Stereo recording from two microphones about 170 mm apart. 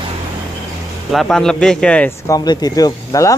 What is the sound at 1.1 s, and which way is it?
Speech, centre (ahead or behind).